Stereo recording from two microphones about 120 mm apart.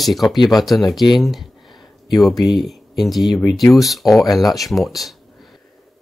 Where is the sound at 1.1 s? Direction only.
Centre (ahead or behind).